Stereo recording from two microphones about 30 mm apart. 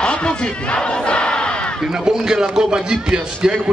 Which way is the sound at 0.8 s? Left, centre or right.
Left.